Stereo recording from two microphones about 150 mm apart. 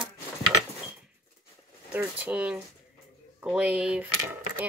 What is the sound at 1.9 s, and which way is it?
Speech, 10° right (ahead or behind).